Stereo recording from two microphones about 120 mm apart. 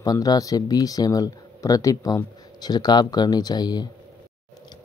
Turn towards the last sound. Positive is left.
turn(degrees=35)  # may be behind; listen again after turning